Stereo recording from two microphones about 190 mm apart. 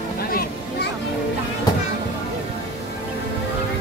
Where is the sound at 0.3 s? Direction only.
50° left (ahead or behind).